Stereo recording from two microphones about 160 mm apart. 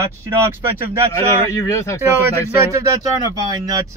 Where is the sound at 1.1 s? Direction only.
15° left (ahead or behind).